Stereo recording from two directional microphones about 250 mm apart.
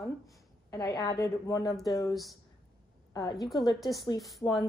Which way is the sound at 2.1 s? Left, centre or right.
Centre.